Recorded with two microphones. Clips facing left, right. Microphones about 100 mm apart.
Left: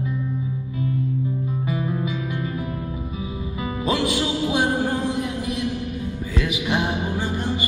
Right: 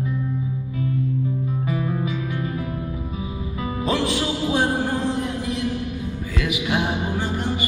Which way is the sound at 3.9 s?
15° left (ahead or behind).